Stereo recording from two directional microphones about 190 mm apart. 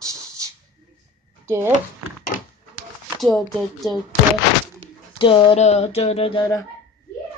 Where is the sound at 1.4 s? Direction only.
15° right (ahead or behind).